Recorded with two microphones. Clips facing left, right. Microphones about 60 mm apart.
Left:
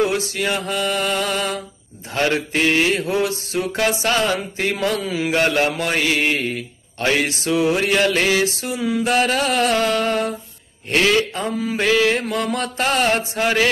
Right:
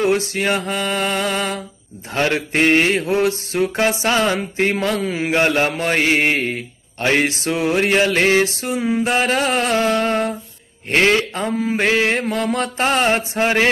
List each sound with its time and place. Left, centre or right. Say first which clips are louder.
0.0 s music: right 2 dB; right
2.1 s a man's voice: right 1 dB; right
2.5 s mantra: right 5 dB; right
3.0 s music: right 3 dB; right
3.7 s music: even; right